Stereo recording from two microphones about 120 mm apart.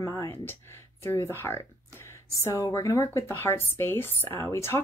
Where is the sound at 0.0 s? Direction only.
20° left (ahead or behind).